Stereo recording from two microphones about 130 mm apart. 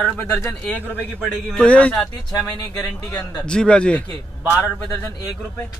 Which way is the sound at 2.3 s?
30° left (ahead or behind).